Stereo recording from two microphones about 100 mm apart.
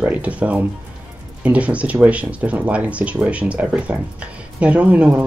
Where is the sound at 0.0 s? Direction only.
15° right (ahead or behind).